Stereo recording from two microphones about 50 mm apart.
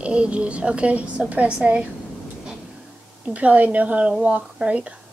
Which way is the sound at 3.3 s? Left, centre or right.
Right.